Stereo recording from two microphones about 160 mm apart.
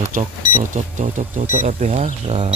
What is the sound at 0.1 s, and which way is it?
Speech, 60° right (ahead or behind).